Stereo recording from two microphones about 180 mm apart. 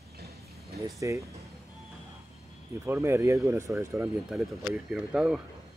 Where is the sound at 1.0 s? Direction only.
15° right (ahead or behind).